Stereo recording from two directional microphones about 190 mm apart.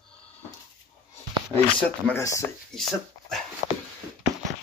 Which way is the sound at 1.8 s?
10° left (ahead or behind).